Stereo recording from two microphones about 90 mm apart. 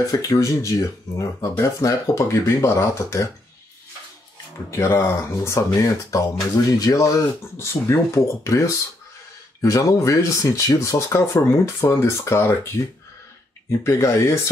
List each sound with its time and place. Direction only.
0.0 s speech: 35° left (ahead or behind)
4.6 s speech: 35° left (ahead or behind)
13.7 s speech: 35° left (ahead or behind)